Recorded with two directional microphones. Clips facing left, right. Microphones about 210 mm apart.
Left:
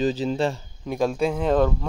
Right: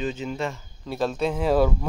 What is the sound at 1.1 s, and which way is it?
Speech, centre (ahead or behind).